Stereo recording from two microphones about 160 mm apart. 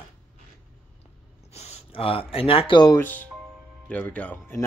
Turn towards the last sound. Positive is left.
turn(degrees=10)  # may be behind; listen again after turning